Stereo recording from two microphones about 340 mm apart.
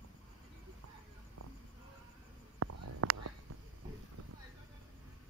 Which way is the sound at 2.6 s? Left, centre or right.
Right.